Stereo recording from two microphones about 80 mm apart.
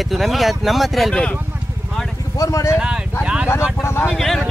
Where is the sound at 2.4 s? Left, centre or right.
Left.